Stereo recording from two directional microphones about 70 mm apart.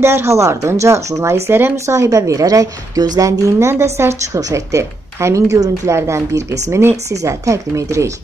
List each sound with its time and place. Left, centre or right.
0.0 s speech: right
4.4 s speech: right